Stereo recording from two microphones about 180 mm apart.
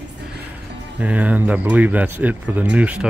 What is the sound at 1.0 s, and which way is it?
Speech, 10° right (ahead or behind).